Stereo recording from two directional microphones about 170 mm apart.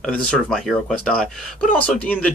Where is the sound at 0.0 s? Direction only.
5° left (ahead or behind).